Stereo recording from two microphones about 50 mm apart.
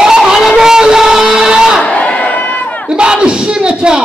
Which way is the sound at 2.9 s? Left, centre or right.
Centre.